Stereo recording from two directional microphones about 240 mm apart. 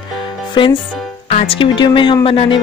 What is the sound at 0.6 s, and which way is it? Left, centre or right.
Speech, left.